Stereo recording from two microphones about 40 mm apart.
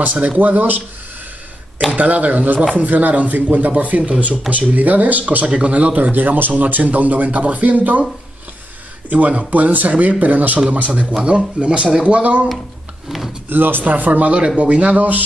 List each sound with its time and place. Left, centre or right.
0.0 s speech: right
1.9 s speech: right
5.5 s speech: right
6.1 s speech: right
9.1 s speech: right
13.5 s speech: right